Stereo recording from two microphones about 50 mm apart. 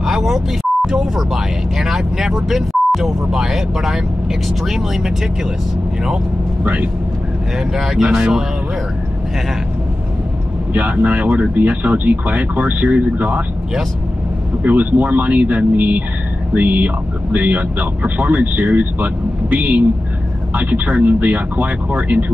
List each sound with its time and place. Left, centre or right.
0.0 s beep: centre
0.8 s speech: centre
6.6 s speech: right
7.7 s speech: centre
10.7 s speech: right
14.6 s speech: right